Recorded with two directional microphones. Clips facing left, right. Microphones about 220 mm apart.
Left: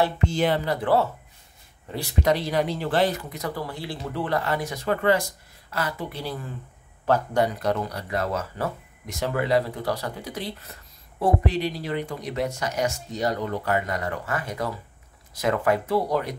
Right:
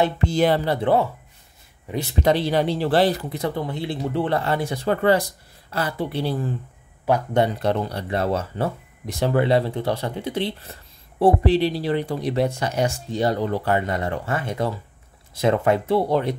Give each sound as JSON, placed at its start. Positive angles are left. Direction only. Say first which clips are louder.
{"t": 0.2, "sound": "speech", "louder": "right 4 dB", "side_deg": -35}
{"t": 1.9, "sound": "speech", "louder": "right 3 dB", "side_deg": -25}
{"t": 7.3, "sound": "speech", "louder": "right 3 dB", "side_deg": -30}